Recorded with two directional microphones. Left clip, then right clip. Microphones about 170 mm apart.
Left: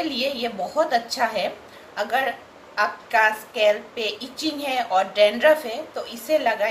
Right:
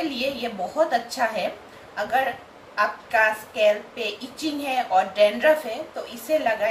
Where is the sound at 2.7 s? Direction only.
55° left (ahead or behind).